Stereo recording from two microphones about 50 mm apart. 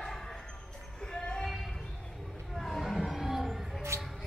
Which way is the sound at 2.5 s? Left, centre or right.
Centre.